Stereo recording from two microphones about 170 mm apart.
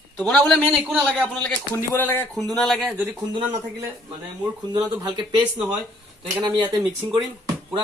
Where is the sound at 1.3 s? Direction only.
10° left (ahead or behind).